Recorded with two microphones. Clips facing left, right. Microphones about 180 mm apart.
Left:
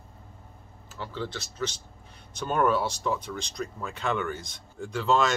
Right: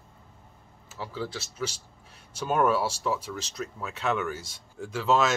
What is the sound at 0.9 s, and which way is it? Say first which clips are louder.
Speech: even; 5° right (ahead or behind).